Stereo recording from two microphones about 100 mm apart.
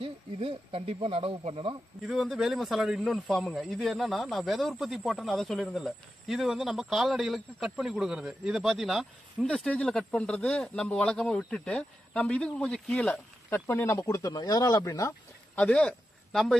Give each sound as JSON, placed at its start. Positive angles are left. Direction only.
{"t": 0.0, "sound": "speech", "side_deg": -70}
{"t": 2.0, "sound": "speech", "side_deg": 0}
{"t": 9.5, "sound": "speech", "side_deg": 10}
{"t": 13.5, "sound": "speech", "side_deg": 20}
{"t": 14.0, "sound": "speech", "side_deg": 40}
{"t": 15.5, "sound": "speech", "side_deg": 15}